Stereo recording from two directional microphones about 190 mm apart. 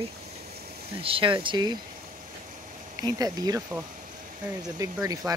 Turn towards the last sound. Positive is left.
turn(degrees=-20)  # may be behind; listen again after turning